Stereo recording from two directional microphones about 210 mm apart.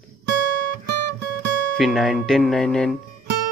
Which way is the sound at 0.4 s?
45° left (ahead or behind).